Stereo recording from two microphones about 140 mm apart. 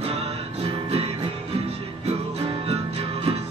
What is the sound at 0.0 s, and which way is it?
Music, 45° right (ahead or behind).